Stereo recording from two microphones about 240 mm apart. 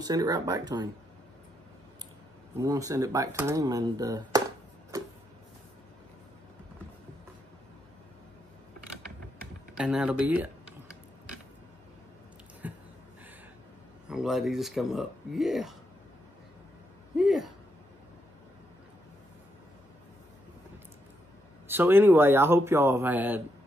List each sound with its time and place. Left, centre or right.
0.0 s speech: centre
2.6 s speech: centre
9.8 s speech: centre
12.6 s a sound: centre
14.0 s speech: centre
17.2 s a sound: centre
21.6 s speech: centre